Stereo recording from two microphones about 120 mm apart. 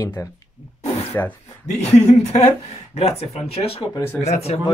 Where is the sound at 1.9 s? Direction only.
65° left (ahead or behind).